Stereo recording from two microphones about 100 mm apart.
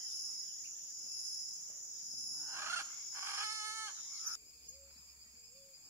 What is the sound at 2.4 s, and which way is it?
Chicken, 25° right (ahead or behind).